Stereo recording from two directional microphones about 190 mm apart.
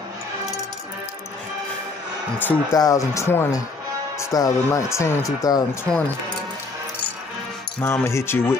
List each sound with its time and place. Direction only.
2.3 s speech: 15° left (ahead or behind)
7.8 s speech: 15° left (ahead or behind)